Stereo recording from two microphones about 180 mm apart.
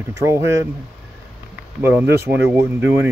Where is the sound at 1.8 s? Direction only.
15° right (ahead or behind).